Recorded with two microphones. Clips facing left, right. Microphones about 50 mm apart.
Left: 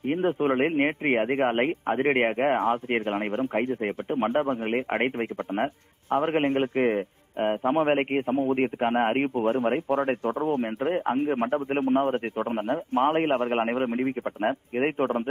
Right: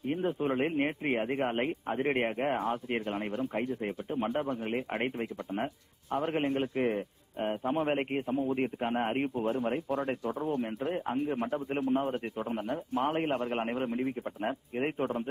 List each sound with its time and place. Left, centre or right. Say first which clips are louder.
0.0 s a man's voice: left 6 dB; left